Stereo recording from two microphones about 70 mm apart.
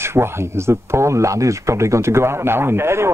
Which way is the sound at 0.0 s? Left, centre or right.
Right.